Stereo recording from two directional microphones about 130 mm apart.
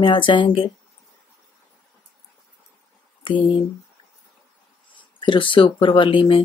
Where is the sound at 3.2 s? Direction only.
40° left (ahead or behind).